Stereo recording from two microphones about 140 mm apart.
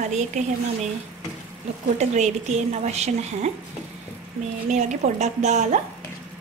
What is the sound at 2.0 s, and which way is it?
A woman's voice, 55° right (ahead or behind).